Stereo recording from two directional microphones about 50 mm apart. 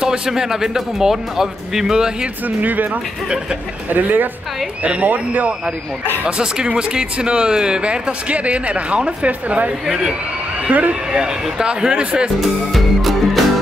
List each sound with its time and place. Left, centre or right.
0.0 s speech: centre
2.4 s speech: right
6.2 s speech: centre
9.8 s speech: centre
10.7 s speech: right
11.1 s speech: centre
12.4 s music: centre